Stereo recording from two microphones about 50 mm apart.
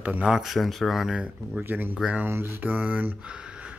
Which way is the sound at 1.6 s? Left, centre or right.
Right.